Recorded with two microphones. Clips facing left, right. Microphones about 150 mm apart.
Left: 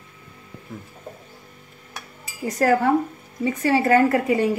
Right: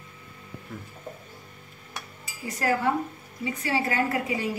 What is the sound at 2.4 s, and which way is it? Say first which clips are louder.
A woman's voice: left 7 dB; 50° left (ahead or behind).